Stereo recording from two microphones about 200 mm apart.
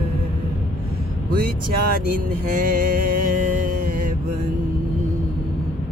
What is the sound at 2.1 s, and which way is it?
Music, 45° right (ahead or behind).